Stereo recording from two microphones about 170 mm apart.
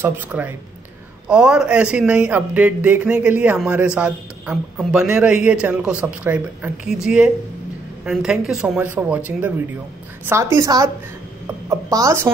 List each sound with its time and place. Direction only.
0.0 s speech: 10° right (ahead or behind)
10.2 s a woman's voice: 15° right (ahead or behind)